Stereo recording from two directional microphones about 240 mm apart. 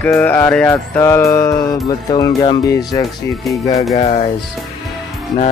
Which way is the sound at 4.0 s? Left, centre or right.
Left.